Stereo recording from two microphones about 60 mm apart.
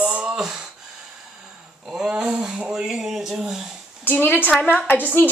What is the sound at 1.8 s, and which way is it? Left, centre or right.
Speech, centre.